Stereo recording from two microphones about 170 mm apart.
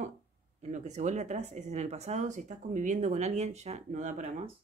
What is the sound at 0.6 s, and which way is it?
Speech, 45° right (ahead or behind).